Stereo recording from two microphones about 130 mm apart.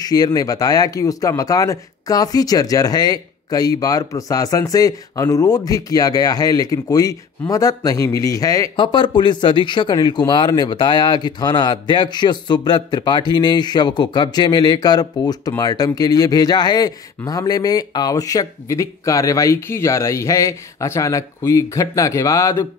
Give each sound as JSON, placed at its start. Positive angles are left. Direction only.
{"t": 0.0, "sound": "speech", "side_deg": 30}
{"t": 8.7, "sound": "speech", "side_deg": 40}